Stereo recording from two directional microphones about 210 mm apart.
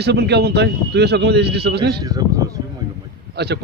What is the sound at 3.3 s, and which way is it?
Speech, 50° right (ahead or behind).